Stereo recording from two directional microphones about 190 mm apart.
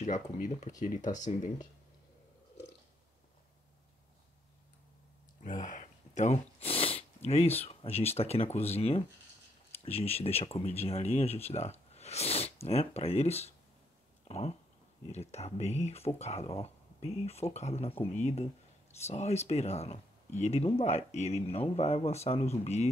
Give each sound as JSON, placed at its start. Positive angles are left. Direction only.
{"t": 0.0, "sound": "speech", "side_deg": 40}
{"t": 5.4, "sound": "snort", "side_deg": 40}
{"t": 7.6, "sound": "speech", "side_deg": 35}